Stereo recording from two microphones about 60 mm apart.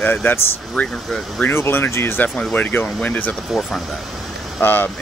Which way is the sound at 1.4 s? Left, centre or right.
Left.